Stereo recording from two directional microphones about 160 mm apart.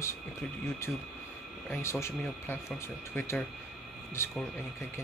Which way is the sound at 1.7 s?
15° left (ahead or behind).